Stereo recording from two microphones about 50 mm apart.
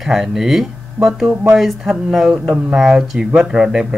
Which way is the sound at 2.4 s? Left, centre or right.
Centre.